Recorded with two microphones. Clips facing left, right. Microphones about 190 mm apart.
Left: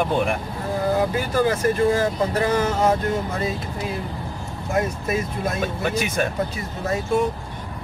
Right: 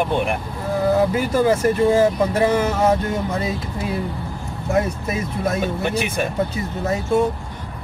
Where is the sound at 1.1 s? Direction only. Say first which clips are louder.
Right 3 dB; 25° right (ahead or behind).